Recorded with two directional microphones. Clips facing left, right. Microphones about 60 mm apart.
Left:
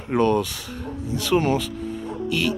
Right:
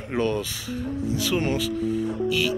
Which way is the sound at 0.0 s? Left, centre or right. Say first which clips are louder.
Left 5 dB; centre.